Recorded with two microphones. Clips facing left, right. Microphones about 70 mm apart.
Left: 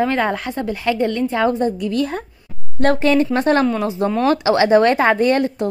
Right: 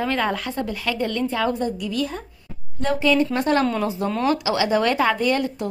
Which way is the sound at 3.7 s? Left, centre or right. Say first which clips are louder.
Left 4 dB; left.